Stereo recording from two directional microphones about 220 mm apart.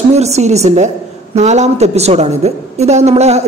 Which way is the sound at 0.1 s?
30° right (ahead or behind).